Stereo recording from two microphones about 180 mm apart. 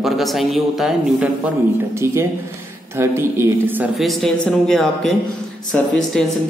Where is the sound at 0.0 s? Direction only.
Centre (ahead or behind).